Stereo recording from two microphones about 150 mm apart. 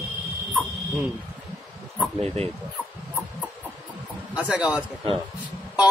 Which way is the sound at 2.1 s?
45° right (ahead or behind).